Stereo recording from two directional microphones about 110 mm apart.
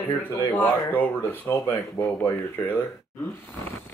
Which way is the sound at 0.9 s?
15° left (ahead or behind).